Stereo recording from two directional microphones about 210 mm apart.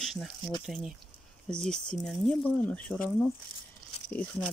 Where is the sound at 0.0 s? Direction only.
Centre (ahead or behind).